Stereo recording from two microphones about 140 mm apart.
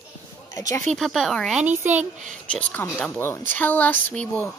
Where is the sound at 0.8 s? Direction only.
5° left (ahead or behind).